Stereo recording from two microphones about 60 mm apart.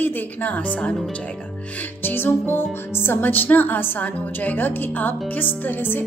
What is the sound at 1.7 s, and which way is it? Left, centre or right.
A woman's voice, left.